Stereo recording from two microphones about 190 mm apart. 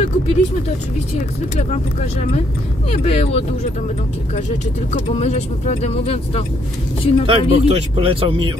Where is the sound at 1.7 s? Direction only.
35° left (ahead or behind).